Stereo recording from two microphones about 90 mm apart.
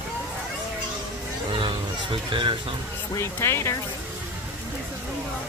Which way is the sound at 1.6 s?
65° right (ahead or behind).